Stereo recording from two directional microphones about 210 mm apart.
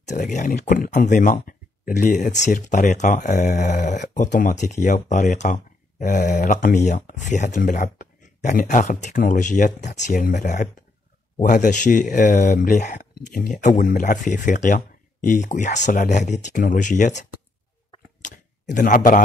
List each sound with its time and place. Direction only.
0.1 s speech: 35° left (ahead or behind)
18.2 s speech: 40° left (ahead or behind)